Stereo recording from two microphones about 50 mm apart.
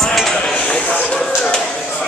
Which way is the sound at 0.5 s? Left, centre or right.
Left.